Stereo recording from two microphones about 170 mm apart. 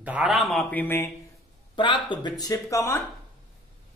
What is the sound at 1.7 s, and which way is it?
Speech, 30° left (ahead or behind).